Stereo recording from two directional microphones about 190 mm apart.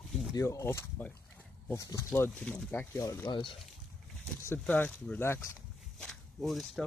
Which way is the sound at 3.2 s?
25° left (ahead or behind).